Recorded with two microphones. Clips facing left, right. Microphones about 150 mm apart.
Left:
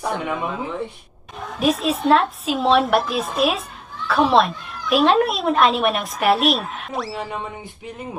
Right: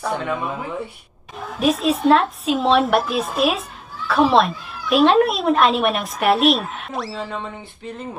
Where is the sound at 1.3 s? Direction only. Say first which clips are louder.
Right 1 dB; centre (ahead or behind).